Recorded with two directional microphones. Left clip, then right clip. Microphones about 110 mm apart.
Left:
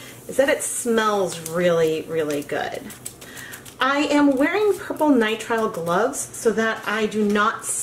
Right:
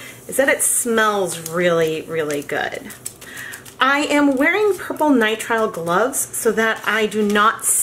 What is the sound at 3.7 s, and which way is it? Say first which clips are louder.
Speech: right 3 dB; 20° right (ahead or behind).